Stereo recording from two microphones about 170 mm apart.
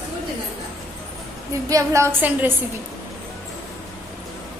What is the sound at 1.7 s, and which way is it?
Speech, 20° right (ahead or behind).